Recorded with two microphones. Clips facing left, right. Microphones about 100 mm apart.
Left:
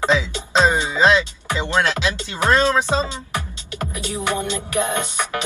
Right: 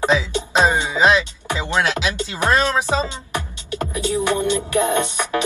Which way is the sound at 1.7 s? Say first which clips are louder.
Even; 15° right (ahead or behind).